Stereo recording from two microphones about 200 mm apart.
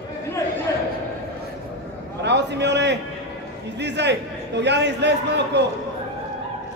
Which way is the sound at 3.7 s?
60° right (ahead or behind).